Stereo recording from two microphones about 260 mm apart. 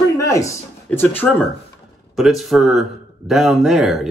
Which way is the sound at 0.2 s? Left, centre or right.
Centre.